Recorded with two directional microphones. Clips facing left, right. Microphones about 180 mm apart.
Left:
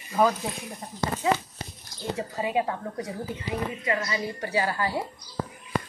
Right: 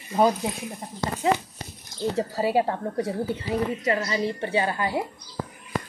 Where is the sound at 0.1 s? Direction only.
20° right (ahead or behind).